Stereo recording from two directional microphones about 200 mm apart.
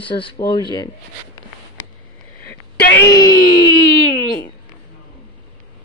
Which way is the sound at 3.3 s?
50° left (ahead or behind).